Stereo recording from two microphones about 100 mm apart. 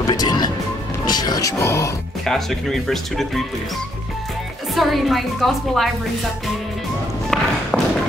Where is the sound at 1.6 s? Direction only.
30° left (ahead or behind).